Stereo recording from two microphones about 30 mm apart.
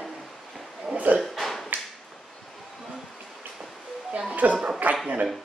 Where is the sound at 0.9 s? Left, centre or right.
Right.